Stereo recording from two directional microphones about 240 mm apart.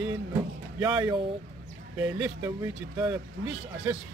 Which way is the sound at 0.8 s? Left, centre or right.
Centre.